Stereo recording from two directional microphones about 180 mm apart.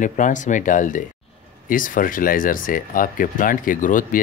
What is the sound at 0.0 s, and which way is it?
Speech, 45° left (ahead or behind).